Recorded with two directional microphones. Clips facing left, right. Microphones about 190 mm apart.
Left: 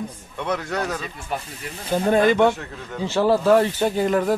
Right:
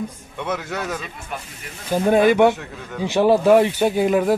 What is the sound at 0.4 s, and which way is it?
A man's voice, 5° right (ahead or behind).